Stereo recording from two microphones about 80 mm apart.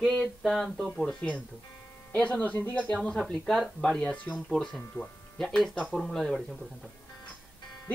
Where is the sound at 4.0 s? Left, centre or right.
Centre.